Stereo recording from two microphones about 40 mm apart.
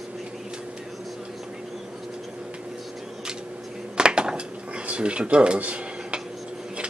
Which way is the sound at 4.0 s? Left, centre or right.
Right.